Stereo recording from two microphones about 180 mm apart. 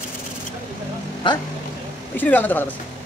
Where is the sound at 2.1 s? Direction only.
10° left (ahead or behind).